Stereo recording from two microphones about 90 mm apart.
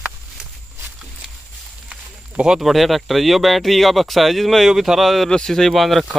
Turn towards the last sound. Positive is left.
turn(degrees=0)  # may be behind; listen again after turning